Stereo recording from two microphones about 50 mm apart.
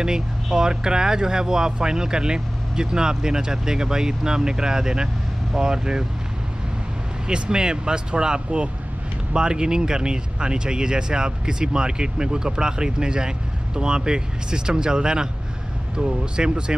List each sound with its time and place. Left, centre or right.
0.0 s speech: centre
7.2 s speech: centre